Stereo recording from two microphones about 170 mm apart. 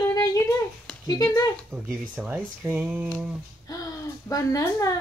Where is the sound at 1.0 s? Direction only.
20° left (ahead or behind).